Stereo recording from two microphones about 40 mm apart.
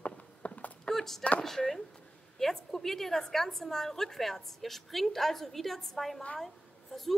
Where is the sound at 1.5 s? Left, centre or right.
Centre.